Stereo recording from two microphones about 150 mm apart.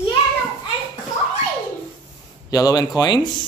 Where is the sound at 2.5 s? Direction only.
25° left (ahead or behind).